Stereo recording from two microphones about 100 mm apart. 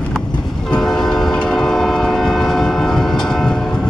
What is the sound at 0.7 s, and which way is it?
Train, 5° left (ahead or behind).